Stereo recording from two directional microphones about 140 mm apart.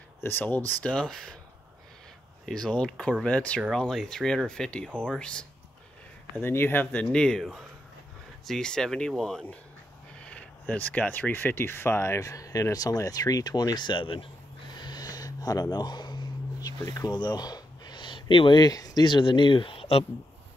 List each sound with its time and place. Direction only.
0.2 s speech: 15° left (ahead or behind)
2.4 s speech: 5° left (ahead or behind)
6.4 s speech: 15° left (ahead or behind); by 14.3 s 40° left (ahead or behind)
14.8 s a sound: 30° left (ahead or behind)